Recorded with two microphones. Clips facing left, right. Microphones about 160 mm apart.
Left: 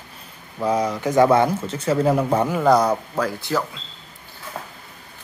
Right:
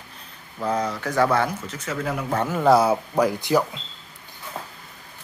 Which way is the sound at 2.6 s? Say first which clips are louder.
Right 1 dB; 5° right (ahead or behind).